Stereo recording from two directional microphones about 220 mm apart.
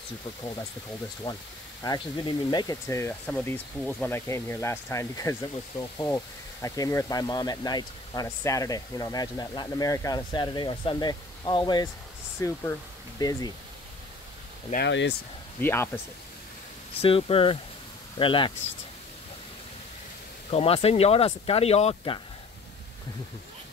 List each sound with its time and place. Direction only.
1.3 s speech: 25° left (ahead or behind)
14.7 s speech: 50° left (ahead or behind)
15.6 s speech: 10° left (ahead or behind)
17.0 s speech: 25° left (ahead or behind)
20.5 s speech: 25° left (ahead or behind)